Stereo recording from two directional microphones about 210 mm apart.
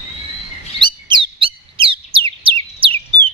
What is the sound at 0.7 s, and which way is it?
Bird vocalization, 20° right (ahead or behind).